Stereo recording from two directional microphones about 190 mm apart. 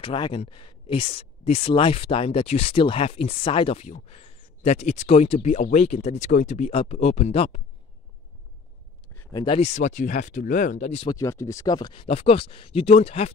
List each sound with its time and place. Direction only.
0.0 s speech: 25° left (ahead or behind)
9.1 s speech: 20° left (ahead or behind); by 11.1 s 35° left (ahead or behind)
11.1 s speech: 15° left (ahead or behind); by 13.3 s 30° left (ahead or behind)